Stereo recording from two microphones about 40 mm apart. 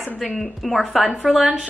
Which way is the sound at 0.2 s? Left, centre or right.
Centre.